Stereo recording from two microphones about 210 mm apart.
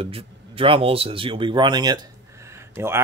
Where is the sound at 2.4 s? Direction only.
10° right (ahead or behind).